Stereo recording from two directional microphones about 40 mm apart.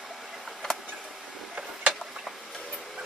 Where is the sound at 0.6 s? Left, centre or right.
Centre.